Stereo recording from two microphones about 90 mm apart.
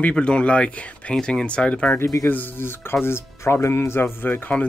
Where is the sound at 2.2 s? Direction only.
20° left (ahead or behind).